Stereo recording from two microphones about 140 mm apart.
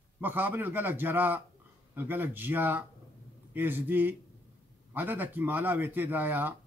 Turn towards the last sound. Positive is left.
turn(degrees=-15)  # may be behind; listen again after turning